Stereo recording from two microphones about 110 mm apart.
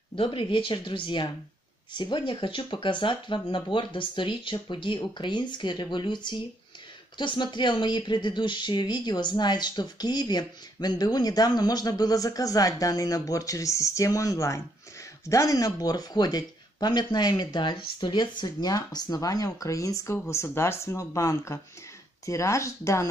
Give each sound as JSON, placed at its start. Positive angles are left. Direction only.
{"t": 0.1, "sound": "speech", "side_deg": 50}